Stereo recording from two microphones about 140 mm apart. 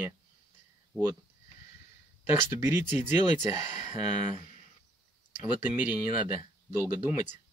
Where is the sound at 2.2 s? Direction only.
15° right (ahead or behind).